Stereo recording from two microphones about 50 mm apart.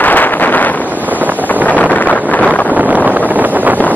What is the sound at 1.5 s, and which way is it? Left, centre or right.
Wind noise, left.